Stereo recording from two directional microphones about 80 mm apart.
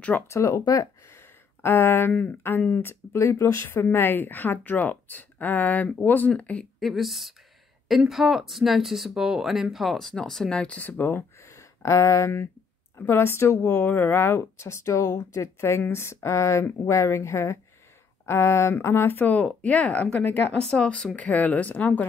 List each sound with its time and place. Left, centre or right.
0.3 s speech: left
1.6 s speech: left
2.9 s speech: left; by 6.7 s centre
6.8 s speech: centre; by 11.2 s left
11.5 s speech: left